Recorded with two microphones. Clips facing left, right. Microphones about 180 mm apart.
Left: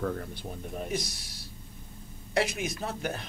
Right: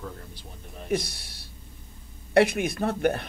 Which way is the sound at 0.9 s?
60° right (ahead or behind).